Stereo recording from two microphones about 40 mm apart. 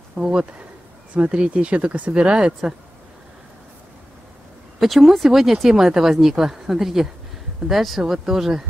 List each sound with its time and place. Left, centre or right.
0.1 s speech: right
4.7 s speech: centre